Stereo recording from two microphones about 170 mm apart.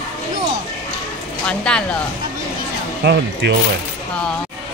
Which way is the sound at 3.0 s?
80° right.